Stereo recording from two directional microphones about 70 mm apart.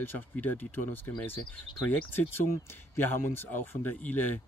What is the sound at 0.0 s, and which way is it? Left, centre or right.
A man's voice, left.